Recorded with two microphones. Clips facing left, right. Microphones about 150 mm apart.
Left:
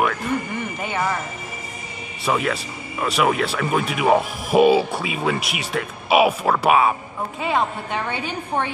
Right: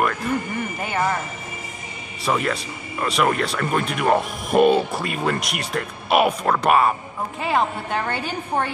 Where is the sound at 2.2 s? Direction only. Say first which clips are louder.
Left 1 dB; centre (ahead or behind).